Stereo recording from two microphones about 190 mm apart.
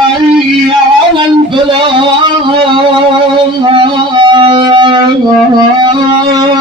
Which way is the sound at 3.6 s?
25° right (ahead or behind).